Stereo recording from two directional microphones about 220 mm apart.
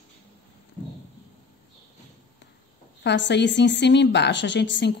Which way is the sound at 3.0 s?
55° left (ahead or behind).